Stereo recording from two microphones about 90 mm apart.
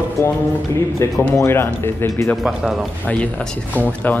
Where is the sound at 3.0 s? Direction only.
15° left (ahead or behind).